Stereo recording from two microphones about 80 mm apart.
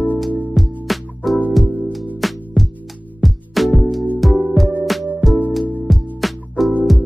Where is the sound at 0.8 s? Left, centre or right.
Centre.